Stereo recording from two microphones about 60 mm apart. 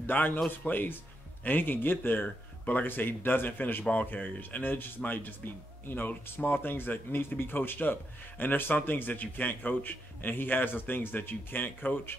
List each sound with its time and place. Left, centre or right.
0.0 s speech: left